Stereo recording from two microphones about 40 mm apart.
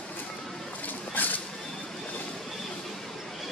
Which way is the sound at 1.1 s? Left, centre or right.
Left.